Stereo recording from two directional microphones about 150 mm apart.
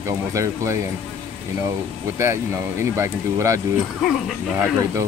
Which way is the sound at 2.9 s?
20° right (ahead or behind).